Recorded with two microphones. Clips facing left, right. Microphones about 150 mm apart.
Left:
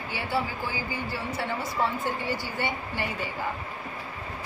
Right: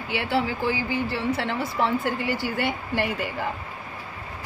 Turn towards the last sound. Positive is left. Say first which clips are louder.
# right 5 dB
turn(degrees=-90)